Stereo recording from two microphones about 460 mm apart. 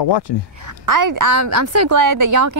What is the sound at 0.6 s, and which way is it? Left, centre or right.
A woman's voice, right.